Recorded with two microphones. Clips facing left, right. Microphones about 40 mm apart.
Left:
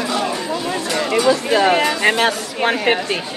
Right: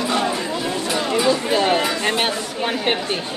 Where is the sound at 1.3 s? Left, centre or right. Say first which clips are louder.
Left 4 dB; left.